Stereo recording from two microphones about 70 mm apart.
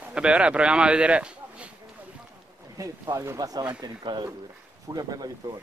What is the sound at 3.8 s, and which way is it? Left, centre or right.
Speech, right.